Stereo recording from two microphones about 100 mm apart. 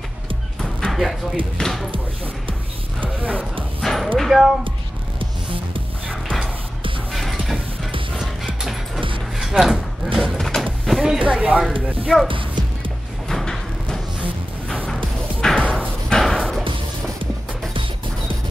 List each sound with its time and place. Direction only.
0.6 s music: 5° left (ahead or behind)
3.8 s dog: centre (ahead or behind)
4.2 s a sound: 5° right (ahead or behind)
6.0 s music: 10° left (ahead or behind)
7.1 s vehicle: centre (ahead or behind)
8.5 s music: centre (ahead or behind)
9.4 s speech: 5° right (ahead or behind)
10.1 s a sound: centre (ahead or behind)
11.3 s speech: 10° right (ahead or behind)
13.3 s sliding door: 5° left (ahead or behind)
15.4 s music: 5° left (ahead or behind)
16.6 s music: 60° right (ahead or behind)